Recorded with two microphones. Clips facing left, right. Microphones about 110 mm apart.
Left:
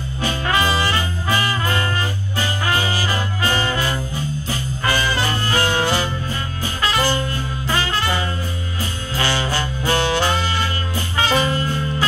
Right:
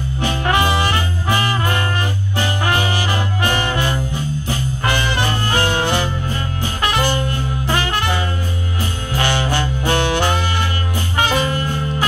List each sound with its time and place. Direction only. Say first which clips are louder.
0.2 s music: right 2 dB; 20° right (ahead or behind)
2.6 s music: right 1 dB; 65° right (ahead or behind)
3.1 s music: right 2 dB; 20° right (ahead or behind)
6.8 s saxophone: right 1 dB; 20° right (ahead or behind)
7.7 s music: right 1 dB; 55° right (ahead or behind)
9.2 s music: right 2 dB; 20° right (ahead or behind)